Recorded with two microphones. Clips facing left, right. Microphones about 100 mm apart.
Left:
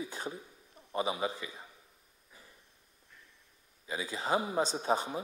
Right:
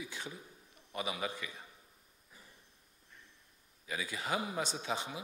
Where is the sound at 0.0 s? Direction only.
40° left (ahead or behind).